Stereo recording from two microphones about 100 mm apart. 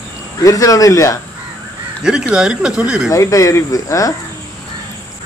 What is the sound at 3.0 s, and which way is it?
Speech, 30° left (ahead or behind).